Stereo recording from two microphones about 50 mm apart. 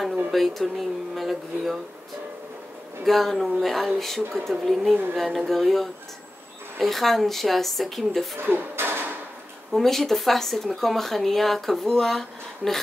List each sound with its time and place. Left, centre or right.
0.3 s speech: centre
3.1 s speech: centre
8.4 s speech: right
9.7 s speech: centre